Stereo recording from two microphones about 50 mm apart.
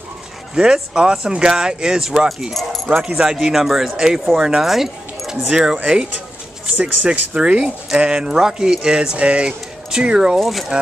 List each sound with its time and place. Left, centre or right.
0.9 s speech: centre
2.5 s speech: centre
3.0 s speech: centre
4.6 s keys jangling: centre
5.5 s speech: centre
6.7 s speech: right
10.4 s speech: centre